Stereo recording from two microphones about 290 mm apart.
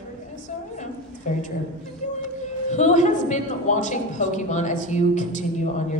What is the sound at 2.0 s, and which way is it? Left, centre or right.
Music, left.